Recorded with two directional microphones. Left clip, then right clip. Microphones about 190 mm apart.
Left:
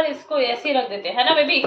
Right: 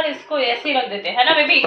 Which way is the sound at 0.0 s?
35° left (ahead or behind).